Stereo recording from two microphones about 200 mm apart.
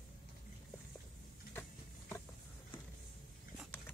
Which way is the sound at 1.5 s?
10° left (ahead or behind).